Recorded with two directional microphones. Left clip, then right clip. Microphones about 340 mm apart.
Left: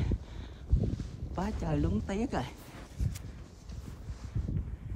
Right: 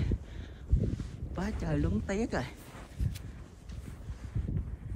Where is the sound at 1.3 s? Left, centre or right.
Centre.